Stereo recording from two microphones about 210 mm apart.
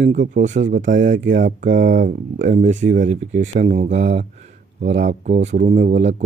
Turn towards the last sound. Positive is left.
turn(degrees=-35)  # may be behind; listen again after turning